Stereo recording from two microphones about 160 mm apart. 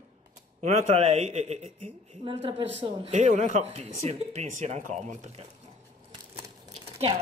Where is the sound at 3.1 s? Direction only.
45° right (ahead or behind).